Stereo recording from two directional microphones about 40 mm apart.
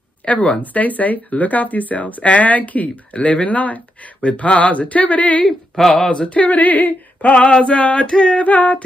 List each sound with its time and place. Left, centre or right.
0.3 s speech: left
5.8 s speech: centre
6.0 s male singing: left
6.4 s a sound: left
7.3 s male singing: left
7.8 s speech: left
8.1 s male singing: left
8.4 s speech: left